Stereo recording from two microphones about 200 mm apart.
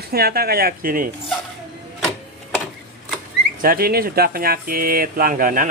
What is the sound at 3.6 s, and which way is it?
Speech, 45° right (ahead or behind).